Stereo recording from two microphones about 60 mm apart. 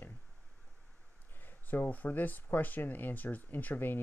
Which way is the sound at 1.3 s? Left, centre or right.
Left.